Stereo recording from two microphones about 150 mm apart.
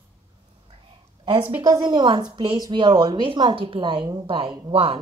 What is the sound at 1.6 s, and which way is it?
A woman's voice, 25° right (ahead or behind).